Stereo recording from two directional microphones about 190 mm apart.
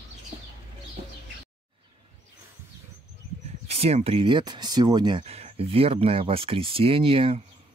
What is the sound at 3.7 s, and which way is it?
Speech, 30° right (ahead or behind).